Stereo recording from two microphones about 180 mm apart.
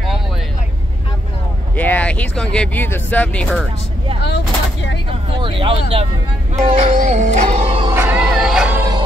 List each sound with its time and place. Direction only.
1.8 s speech: 10° left (ahead or behind)
5.4 s speech: 30° right (ahead or behind)
6.6 s music: 40° right (ahead or behind)
7.9 s music: 15° right (ahead or behind)
8.2 s music: centre (ahead or behind)